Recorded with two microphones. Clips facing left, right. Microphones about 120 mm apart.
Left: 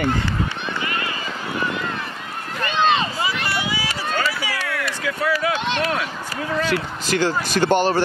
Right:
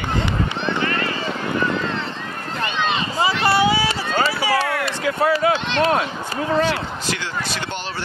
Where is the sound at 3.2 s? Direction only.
30° right (ahead or behind).